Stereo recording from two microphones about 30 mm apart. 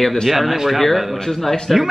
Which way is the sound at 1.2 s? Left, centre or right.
Centre.